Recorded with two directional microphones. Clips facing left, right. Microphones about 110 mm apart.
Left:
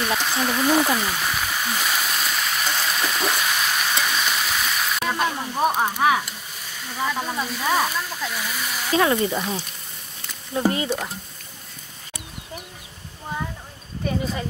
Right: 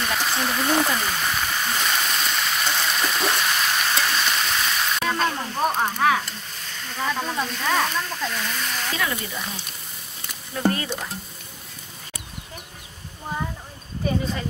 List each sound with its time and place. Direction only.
0.0 s a sound: centre (ahead or behind)
8.9 s speech: 35° left (ahead or behind)
10.7 s stir: 15° left (ahead or behind)
14.0 s speech: centre (ahead or behind)